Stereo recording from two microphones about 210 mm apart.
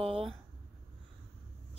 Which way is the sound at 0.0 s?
25° right (ahead or behind).